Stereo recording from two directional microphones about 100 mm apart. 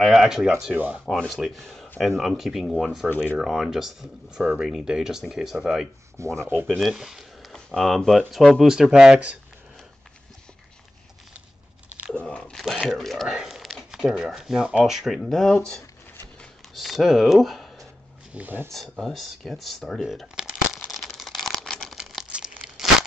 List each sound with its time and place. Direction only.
0.0 s speech: 5° right (ahead or behind)
1.0 s speech: 5° left (ahead or behind)
3.1 s speech: 20° left (ahead or behind)
3.3 s speech: 5° right (ahead or behind)
6.2 s speech: 30° right (ahead or behind)
6.7 s speech: centre (ahead or behind)
12.1 s biting: 10° left (ahead or behind)
12.8 s speech: centre (ahead or behind)
16.3 s a sound: centre (ahead or behind)
18.3 s speech: 15° right (ahead or behind)
18.7 s shuffling cards: centre (ahead or behind)
21.9 s crumpling: 5° right (ahead or behind)
22.3 s tearing: 10° right (ahead or behind)